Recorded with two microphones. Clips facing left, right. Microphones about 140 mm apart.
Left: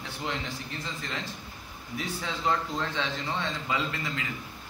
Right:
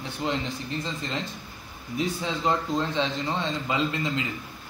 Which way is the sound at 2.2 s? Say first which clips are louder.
Left 1 dB; 20° right (ahead or behind).